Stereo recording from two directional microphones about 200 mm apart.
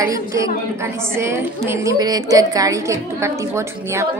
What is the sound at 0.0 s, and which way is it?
A woman's voice, 15° right (ahead or behind).